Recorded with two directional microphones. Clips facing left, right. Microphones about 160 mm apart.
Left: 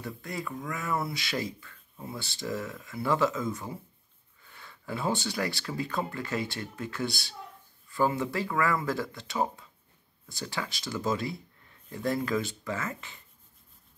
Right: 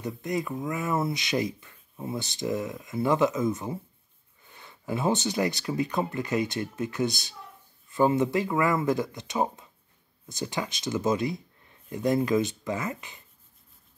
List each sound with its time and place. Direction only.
0.0 s speech: 20° right (ahead or behind)